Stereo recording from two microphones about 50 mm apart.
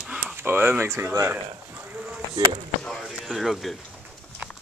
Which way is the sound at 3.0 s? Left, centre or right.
Centre.